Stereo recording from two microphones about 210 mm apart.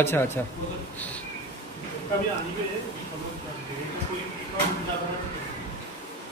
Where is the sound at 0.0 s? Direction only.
10° left (ahead or behind).